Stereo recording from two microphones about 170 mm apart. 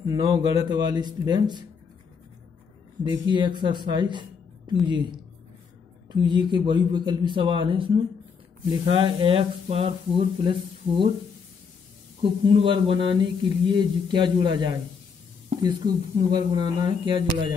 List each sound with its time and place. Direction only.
0.0 s speech: 25° right (ahead or behind)
3.0 s speech: 25° right (ahead or behind)
8.9 s speech: 30° right (ahead or behind)
12.2 s speech: 30° right (ahead or behind)